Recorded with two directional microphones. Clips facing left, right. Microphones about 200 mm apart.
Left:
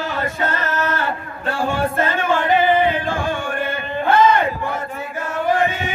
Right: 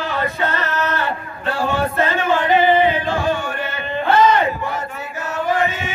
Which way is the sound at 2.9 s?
50° left (ahead or behind).